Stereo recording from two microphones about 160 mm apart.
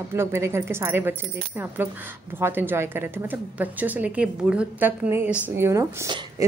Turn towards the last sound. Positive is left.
turn(degrees=-20)  # may be behind; listen again after turning